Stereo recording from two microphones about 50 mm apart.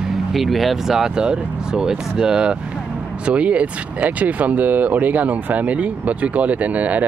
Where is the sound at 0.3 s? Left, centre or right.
Centre.